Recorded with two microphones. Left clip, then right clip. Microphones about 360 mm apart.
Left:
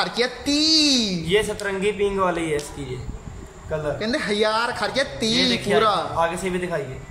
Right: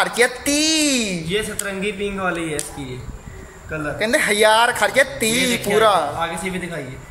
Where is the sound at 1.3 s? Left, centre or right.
Centre.